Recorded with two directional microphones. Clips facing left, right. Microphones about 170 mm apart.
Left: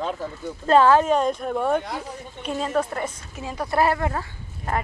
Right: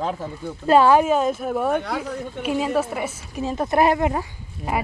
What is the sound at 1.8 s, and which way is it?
Speech, 65° right (ahead or behind).